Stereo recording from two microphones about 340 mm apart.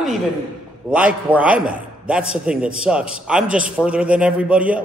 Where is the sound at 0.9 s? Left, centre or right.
Centre.